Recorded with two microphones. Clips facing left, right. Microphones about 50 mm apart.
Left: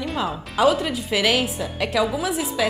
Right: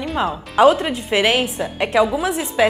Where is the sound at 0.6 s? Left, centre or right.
Right.